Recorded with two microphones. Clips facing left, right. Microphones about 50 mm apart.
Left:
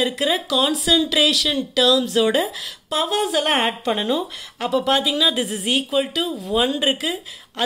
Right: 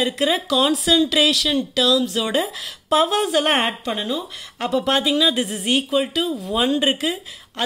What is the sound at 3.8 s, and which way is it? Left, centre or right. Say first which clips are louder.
Speech: left 3 dB; left.